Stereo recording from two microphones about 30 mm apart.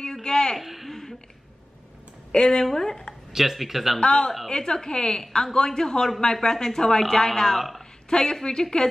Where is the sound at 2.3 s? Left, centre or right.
Left.